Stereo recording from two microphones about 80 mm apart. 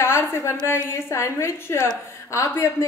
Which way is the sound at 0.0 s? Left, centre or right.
Left.